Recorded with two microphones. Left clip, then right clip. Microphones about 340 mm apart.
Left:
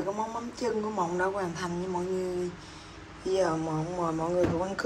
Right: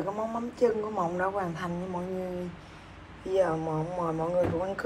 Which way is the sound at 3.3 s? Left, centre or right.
Centre.